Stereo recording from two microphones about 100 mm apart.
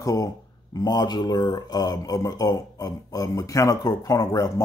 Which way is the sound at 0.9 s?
45° left (ahead or behind).